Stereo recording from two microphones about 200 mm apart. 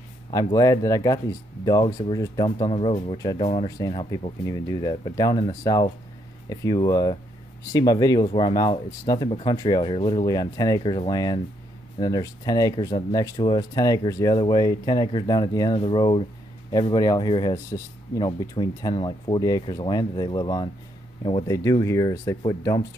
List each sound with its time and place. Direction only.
0.3 s speech: 20° left (ahead or behind)
21.5 s speech: 15° left (ahead or behind)